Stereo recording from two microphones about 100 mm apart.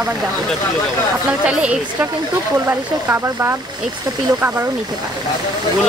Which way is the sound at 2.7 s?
25° right (ahead or behind).